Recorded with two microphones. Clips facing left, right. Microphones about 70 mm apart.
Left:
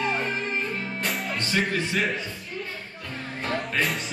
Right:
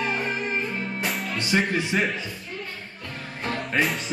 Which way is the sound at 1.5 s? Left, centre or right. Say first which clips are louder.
Right 3 dB; centre.